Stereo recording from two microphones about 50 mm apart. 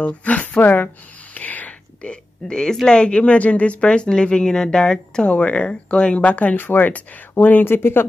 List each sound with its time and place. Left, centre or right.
0.0 s speech: left
1.3 s a sound: left
2.0 s speech: centre
6.5 s speech: left